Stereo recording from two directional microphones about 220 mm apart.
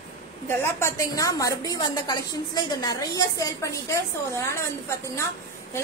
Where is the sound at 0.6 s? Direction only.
10° left (ahead or behind).